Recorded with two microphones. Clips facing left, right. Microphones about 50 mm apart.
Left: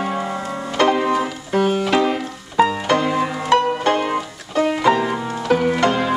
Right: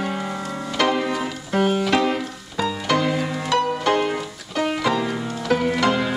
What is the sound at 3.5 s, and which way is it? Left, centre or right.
Banjo, left.